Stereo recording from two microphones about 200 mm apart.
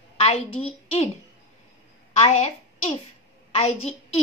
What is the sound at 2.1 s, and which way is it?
A child's voice, 30° left (ahead or behind).